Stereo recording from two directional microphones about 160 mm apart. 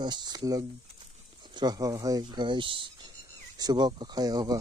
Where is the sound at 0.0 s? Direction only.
25° right (ahead or behind).